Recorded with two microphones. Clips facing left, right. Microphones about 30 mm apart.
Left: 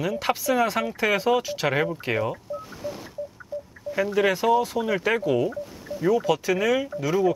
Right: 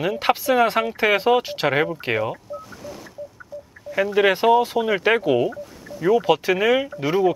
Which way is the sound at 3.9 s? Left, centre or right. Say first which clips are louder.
Right 4 dB; right.